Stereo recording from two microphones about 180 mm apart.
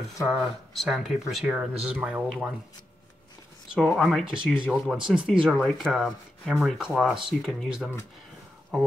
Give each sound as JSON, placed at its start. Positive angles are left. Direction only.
{"t": 0.2, "sound": "speech", "side_deg": 0}
{"t": 3.8, "sound": "speech", "side_deg": 0}
{"t": 8.7, "sound": "speech", "side_deg": 0}